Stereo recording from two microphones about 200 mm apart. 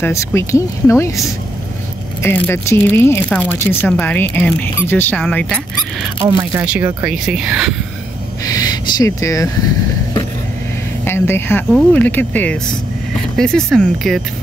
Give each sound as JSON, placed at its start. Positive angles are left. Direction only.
{"t": 0.0, "sound": "speech", "side_deg": 15}
{"t": 6.2, "sound": "speech", "side_deg": -20}
{"t": 8.5, "sound": "speech", "side_deg": 20}
{"t": 11.1, "sound": "speech", "side_deg": 10}